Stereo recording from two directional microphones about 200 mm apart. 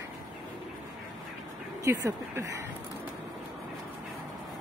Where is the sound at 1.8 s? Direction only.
15° right (ahead or behind).